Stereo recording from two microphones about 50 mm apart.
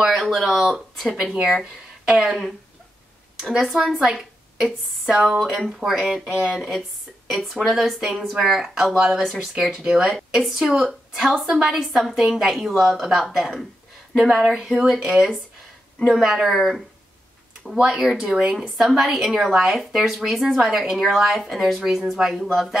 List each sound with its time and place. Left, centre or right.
0.0 s a sound: centre
0.5 s a woman's voice: centre
1.2 s speech: right
3.5 s a woman's voice: centre